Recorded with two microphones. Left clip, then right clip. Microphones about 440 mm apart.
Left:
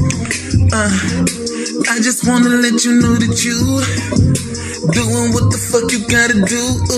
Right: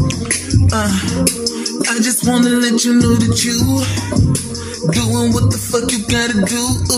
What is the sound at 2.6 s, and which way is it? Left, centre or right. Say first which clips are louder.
Music: left 1 dB; right.